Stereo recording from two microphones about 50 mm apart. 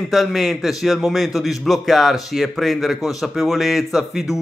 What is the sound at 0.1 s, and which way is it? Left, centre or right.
A man's voice, centre.